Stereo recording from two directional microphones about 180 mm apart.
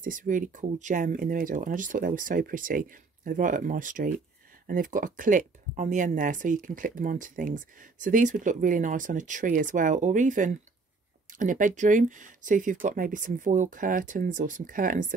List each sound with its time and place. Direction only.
0.0 s speech: 45° right (ahead or behind)